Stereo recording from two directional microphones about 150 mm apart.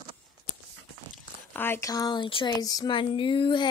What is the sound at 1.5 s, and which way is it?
Speech, 15° left (ahead or behind).